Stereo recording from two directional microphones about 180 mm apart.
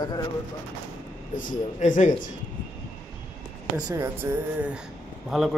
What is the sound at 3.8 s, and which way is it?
A man's voice, 15° right (ahead or behind).